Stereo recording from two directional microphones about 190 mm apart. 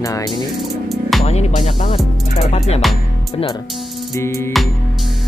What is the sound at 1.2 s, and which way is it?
Music, 35° left (ahead or behind).